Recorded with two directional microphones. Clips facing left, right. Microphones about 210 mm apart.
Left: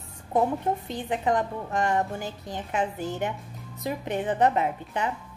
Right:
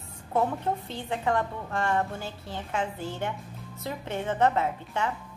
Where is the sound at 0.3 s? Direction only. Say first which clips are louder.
Left 2 dB; 15° left (ahead or behind).